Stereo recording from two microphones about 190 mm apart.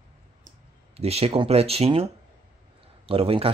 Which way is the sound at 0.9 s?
35° right (ahead or behind).